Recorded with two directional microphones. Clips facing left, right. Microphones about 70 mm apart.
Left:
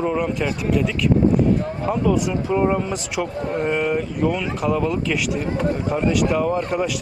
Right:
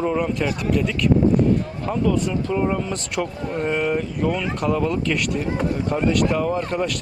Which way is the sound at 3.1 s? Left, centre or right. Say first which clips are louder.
Left 1 dB; centre.